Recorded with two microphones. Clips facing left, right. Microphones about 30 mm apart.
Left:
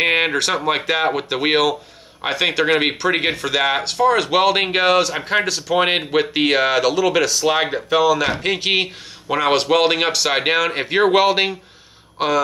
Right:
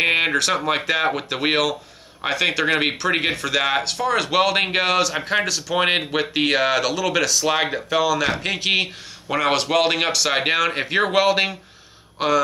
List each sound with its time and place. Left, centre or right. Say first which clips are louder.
0.0 s speech: left 1 dB; centre